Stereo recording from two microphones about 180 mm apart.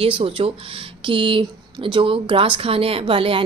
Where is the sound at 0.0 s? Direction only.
30° right (ahead or behind).